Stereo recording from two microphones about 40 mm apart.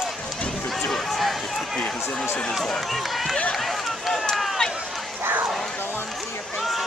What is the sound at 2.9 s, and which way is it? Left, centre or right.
Speech, centre.